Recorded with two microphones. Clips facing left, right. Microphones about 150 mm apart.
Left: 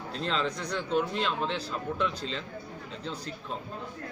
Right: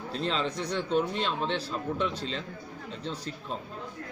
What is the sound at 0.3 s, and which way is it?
A man's voice, 30° right (ahead or behind).